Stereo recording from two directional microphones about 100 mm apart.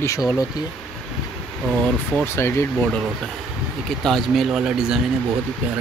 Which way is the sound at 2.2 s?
25° left (ahead or behind).